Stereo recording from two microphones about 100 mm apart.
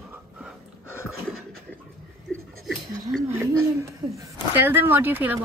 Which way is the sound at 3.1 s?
5° right (ahead or behind).